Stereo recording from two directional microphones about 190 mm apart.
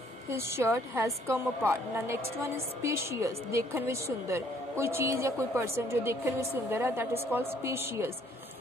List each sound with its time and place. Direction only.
0.3 s a woman's voice: 15° right (ahead or behind)